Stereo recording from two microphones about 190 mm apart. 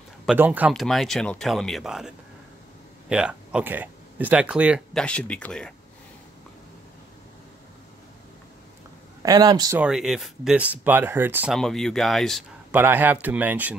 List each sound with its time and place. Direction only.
0.3 s speech: 5° right (ahead or behind)
5.0 s speech: 5° left (ahead or behind)
9.2 s a man's voice: 20° right (ahead or behind)
9.8 s speech: 5° right (ahead or behind)
11.5 s speech: 5° left (ahead or behind)
12.7 s speech: 10° right (ahead or behind)